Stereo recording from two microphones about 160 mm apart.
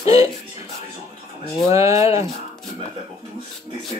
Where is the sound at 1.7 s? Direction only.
20° right (ahead or behind).